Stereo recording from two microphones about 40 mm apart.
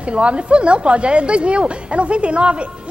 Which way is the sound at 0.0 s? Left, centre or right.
Right.